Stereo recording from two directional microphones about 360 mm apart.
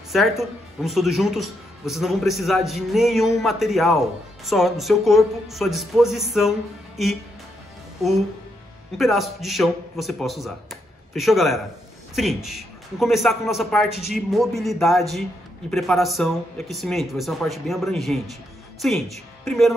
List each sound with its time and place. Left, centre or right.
0.1 s speech: centre
8.9 s speech: centre